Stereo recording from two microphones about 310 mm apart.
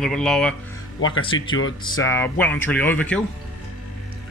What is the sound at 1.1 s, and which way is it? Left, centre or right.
Speech, centre.